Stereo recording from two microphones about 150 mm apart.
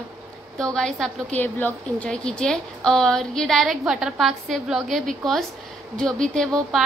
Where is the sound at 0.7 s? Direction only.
Centre (ahead or behind).